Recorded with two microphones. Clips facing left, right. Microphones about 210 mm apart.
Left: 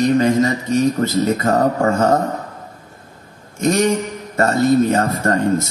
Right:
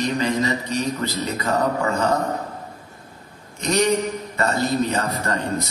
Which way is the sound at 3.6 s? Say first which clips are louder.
Left 4 dB; 50° left (ahead or behind).